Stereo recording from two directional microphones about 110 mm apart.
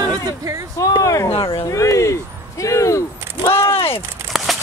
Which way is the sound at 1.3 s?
55° left (ahead or behind).